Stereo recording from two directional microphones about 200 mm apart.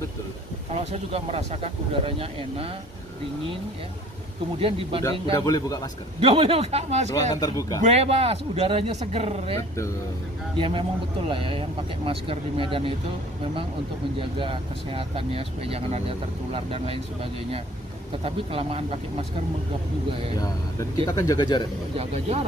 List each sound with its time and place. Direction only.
0.7 s speech: 30° right (ahead or behind)
4.6 s speech: 30° right (ahead or behind)
5.3 s a man's voice: 20° left (ahead or behind)
6.2 s speech: 30° right (ahead or behind)
7.3 s a man's voice: 15° left (ahead or behind)
7.8 s speech: 30° right (ahead or behind)
10.6 s speech: 25° right (ahead or behind)
14.4 s speech: 25° right (ahead or behind)
21.1 s speech: 20° left (ahead or behind)
21.9 s speech: 30° right (ahead or behind)